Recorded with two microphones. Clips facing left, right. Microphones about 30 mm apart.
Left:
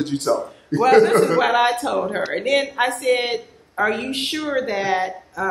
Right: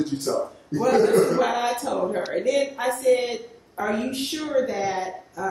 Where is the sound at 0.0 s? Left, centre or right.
Left.